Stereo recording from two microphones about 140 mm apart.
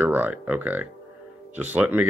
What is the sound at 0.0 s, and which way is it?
Speech, 15° right (ahead or behind).